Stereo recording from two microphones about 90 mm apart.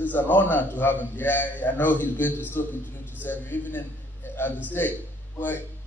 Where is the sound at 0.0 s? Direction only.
20° left (ahead or behind).